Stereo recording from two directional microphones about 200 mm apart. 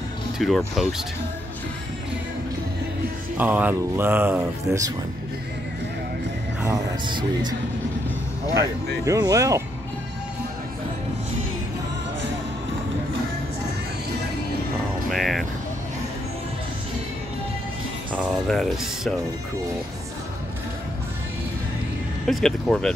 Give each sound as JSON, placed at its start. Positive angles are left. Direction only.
{"t": 0.4, "sound": "speech", "side_deg": 0}
{"t": 3.3, "sound": "speech", "side_deg": -10}
{"t": 6.6, "sound": "speech", "side_deg": -20}
{"t": 9.0, "sound": "speech", "side_deg": -15}
{"t": 15.0, "sound": "music", "side_deg": 0}
{"t": 18.5, "sound": "speech", "side_deg": 0}
{"t": 22.2, "sound": "speech", "side_deg": 0}